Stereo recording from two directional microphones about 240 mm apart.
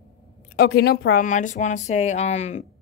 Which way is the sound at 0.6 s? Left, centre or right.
Left.